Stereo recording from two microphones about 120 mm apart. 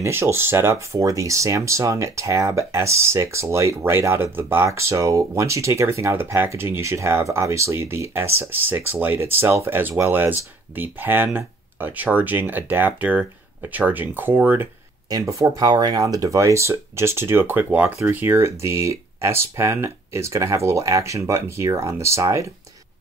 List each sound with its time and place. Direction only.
0.0 s speech: 20° right (ahead or behind)
15.0 s speech: 30° right (ahead or behind)